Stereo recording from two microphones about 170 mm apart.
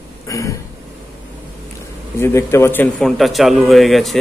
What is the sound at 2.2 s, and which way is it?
Speech, 15° left (ahead or behind).